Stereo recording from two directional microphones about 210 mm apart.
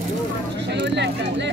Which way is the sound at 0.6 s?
55° right (ahead or behind).